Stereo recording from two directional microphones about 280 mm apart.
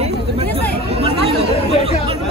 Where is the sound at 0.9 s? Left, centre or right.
Right.